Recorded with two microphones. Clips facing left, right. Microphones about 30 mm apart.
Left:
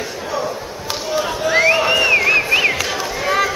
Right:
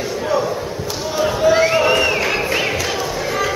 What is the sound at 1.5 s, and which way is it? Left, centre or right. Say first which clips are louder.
Music: left 2 dB; centre.